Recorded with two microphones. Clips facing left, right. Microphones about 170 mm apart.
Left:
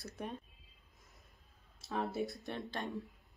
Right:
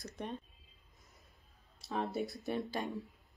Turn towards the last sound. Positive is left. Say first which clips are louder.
# right 3 dB
turn(degrees=0)  # may be behind; listen again after turning